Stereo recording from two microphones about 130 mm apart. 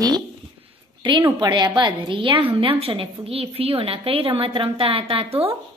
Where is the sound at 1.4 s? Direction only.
35° right (ahead or behind).